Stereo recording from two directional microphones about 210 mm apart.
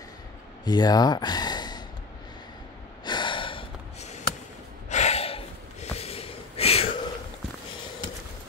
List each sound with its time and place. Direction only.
0.7 s speech: 20° left (ahead or behind)
3.1 s gasp: 20° left (ahead or behind)
4.8 s snort: 35° left (ahead or behind)